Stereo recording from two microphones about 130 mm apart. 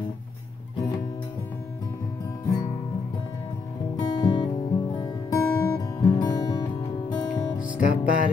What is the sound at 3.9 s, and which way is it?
Music, 35° left (ahead or behind).